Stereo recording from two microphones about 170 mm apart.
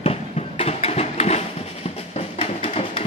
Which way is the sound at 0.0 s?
35° left (ahead or behind).